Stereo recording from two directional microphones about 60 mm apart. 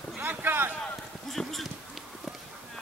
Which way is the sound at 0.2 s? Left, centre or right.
Right.